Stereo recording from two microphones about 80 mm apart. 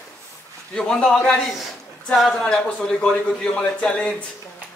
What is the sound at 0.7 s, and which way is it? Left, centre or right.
Speech, centre.